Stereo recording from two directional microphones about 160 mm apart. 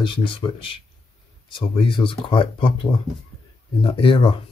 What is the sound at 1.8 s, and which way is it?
Speech, 35° left (ahead or behind).